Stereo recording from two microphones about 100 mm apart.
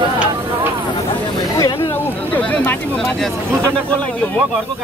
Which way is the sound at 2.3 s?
15° left (ahead or behind).